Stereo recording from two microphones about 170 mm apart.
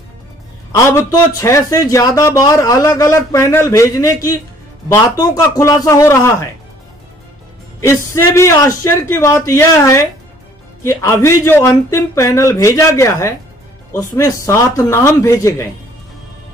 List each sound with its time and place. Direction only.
0.7 s a man's voice: 20° left (ahead or behind)
7.8 s speech: 15° left (ahead or behind)